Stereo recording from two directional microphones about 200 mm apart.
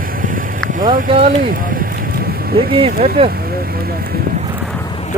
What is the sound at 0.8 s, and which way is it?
Speech, 40° right (ahead or behind).